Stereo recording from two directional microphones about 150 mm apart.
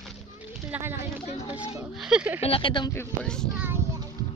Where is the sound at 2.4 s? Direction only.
35° left (ahead or behind).